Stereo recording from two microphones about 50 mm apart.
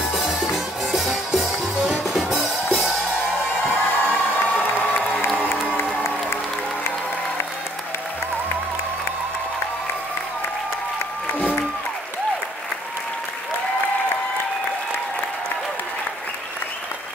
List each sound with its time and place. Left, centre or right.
0.1 s music: centre
3.6 s crowd: left
5.3 s music: left
6.0 s music: left